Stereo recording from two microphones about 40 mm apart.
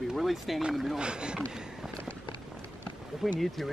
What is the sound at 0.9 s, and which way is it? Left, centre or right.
Speech, right.